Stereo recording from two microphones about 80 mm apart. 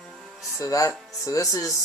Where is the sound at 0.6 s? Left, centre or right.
Left.